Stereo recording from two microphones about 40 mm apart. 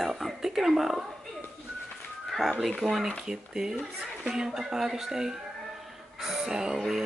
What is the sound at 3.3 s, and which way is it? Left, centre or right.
Speech, centre.